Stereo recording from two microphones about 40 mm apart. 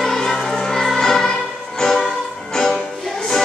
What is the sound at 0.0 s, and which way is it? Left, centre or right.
Music, centre.